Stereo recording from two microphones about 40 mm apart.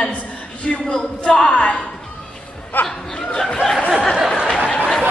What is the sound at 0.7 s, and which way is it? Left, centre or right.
Speech, centre.